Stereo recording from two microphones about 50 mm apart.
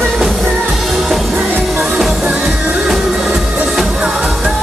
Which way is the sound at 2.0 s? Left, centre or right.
Centre.